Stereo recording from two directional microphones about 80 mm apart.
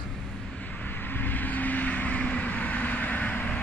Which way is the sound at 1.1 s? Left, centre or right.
Left.